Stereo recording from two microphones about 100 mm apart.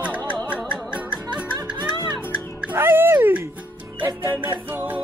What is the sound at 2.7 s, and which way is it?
Music, 25° right (ahead or behind).